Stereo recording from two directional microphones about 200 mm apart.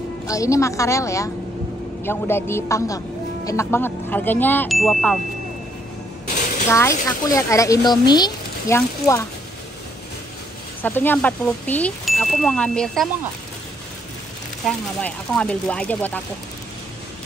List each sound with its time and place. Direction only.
0.3 s speech: 15° left (ahead or behind); by 5.2 s centre (ahead or behind)
6.7 s speech: 15° left (ahead or behind)
10.8 s speech: 10° left (ahead or behind)
14.7 s speech: 5° left (ahead or behind)